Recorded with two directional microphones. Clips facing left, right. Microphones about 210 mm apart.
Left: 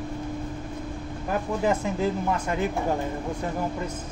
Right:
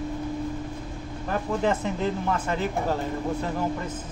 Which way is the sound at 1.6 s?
10° left (ahead or behind).